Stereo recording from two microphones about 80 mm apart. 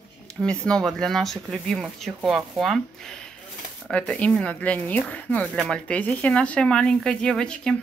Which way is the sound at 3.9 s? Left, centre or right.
Centre.